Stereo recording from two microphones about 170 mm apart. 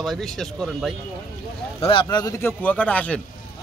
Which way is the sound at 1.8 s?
30° left (ahead or behind).